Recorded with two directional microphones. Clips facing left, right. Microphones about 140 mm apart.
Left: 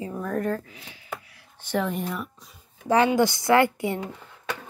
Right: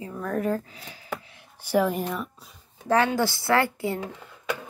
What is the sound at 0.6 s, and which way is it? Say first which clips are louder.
Speech: right 2 dB; 40° right (ahead or behind).